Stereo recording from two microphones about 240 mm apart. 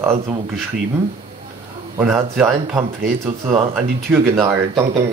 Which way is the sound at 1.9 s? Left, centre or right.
Centre.